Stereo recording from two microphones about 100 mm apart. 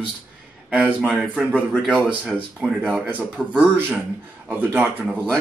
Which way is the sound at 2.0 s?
15° right (ahead or behind).